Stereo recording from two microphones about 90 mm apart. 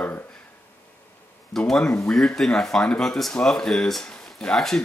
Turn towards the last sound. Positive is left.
turn(degrees=5)  # may be behind; listen again after turning